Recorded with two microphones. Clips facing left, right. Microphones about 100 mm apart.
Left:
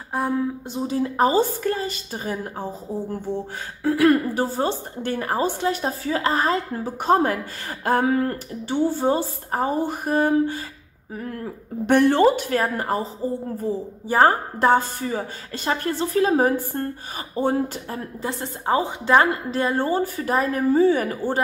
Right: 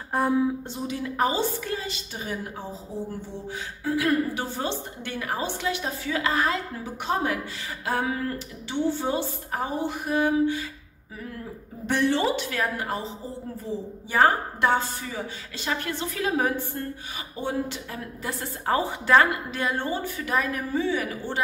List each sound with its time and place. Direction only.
0.1 s speech: 5° left (ahead or behind)
0.7 s a woman's voice: 35° left (ahead or behind)
3.8 s a woman's voice: 55° left (ahead or behind)
4.3 s a woman's voice: 40° left (ahead or behind)
11.8 s a woman's voice: 55° left (ahead or behind)
18.2 s a woman's voice: 20° left (ahead or behind)
19.5 s a woman's voice: 35° left (ahead or behind)